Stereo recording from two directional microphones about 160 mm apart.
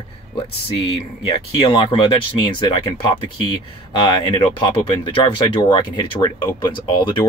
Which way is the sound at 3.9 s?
30° left (ahead or behind).